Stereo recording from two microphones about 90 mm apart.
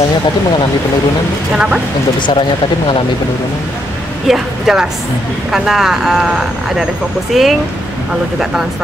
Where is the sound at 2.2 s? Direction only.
65° left (ahead or behind).